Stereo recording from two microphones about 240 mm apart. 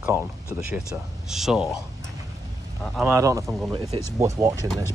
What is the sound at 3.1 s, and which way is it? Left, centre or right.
Speech, centre.